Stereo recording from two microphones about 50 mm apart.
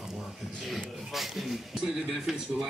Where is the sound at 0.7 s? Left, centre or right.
Centre.